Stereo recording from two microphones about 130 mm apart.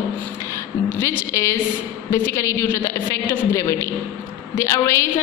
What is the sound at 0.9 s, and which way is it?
A woman's voice, 20° left (ahead or behind).